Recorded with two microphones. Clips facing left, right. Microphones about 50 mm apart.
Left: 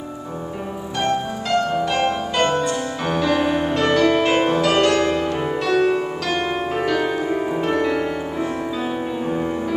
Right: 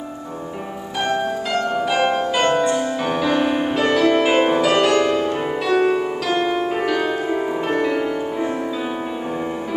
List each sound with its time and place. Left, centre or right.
1.0 s music: centre
2.4 s music: centre
3.1 s music: centre